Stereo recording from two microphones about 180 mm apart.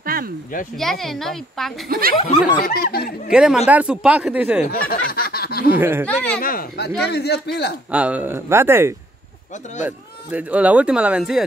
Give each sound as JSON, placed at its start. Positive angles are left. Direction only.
{"t": 0.0, "sound": "a sound", "side_deg": -55}
{"t": 0.7, "sound": "speech", "side_deg": 0}
{"t": 1.9, "sound": "speech", "side_deg": -55}
{"t": 2.6, "sound": "speech", "side_deg": 55}
{"t": 3.3, "sound": "speech", "side_deg": -5}
{"t": 4.6, "sound": "snicker", "side_deg": 55}
{"t": 5.8, "sound": "speech", "side_deg": -10}
{"t": 6.0, "sound": "speech", "side_deg": 5}
{"t": 6.4, "sound": "speech", "side_deg": 55}
{"t": 7.1, "sound": "speech", "side_deg": 65}
{"t": 7.9, "sound": "speech", "side_deg": -5}